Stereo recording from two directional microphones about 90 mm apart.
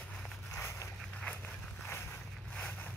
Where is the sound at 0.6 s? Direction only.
30° left (ahead or behind).